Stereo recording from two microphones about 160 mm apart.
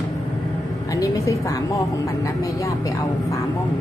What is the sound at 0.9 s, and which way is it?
Speech, 20° left (ahead or behind).